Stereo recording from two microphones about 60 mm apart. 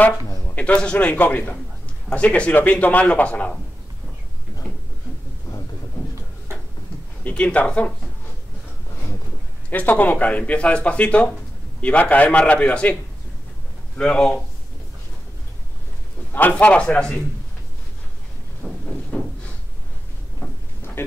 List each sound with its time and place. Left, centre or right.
0.6 s speech: left
7.2 s speech: left
9.7 s speech: left
13.9 s speech: centre
16.3 s speech: left
18.6 s a sound: left